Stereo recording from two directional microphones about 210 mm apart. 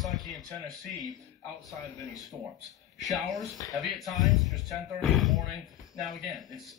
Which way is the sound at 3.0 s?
Centre (ahead or behind).